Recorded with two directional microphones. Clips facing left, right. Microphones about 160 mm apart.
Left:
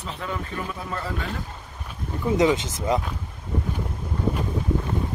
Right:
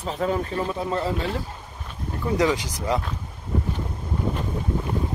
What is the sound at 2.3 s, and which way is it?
Speech, 20° left (ahead or behind).